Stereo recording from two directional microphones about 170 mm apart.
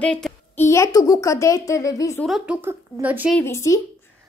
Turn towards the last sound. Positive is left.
turn(degrees=15)  # may be behind; listen again after turning